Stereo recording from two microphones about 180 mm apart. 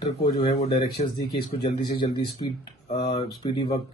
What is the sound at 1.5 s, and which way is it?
Speech, 25° left (ahead or behind).